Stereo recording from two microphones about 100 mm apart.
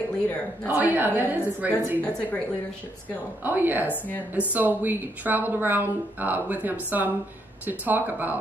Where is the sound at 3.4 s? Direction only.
20° right (ahead or behind).